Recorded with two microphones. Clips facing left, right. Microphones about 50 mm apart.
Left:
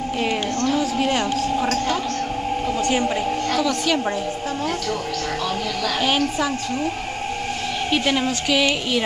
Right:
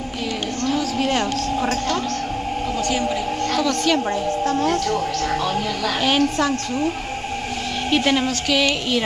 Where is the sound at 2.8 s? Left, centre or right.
Left.